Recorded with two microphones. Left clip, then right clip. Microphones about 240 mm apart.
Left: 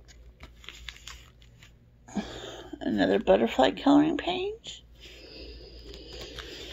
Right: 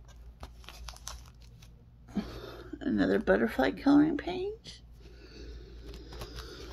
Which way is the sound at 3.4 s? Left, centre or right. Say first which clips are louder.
Left 5 dB; centre.